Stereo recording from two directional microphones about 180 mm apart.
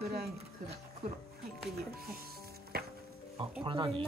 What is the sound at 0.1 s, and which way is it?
Music, 65° right (ahead or behind).